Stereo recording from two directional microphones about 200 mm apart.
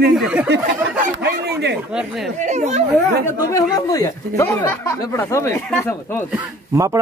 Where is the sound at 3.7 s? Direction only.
15° left (ahead or behind).